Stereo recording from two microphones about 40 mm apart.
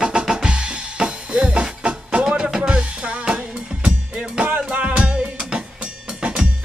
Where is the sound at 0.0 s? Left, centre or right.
Right.